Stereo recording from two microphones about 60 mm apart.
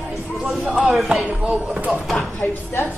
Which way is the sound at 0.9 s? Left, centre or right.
Centre.